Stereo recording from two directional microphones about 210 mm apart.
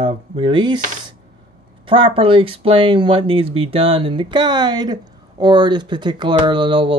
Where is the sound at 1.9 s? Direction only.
25° right (ahead or behind).